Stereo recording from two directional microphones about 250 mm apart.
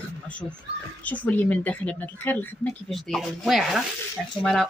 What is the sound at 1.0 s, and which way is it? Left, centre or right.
A woman's voice, centre.